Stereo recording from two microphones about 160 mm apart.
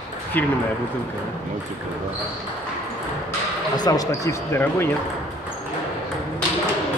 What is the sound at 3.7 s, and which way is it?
Speech, 25° left (ahead or behind).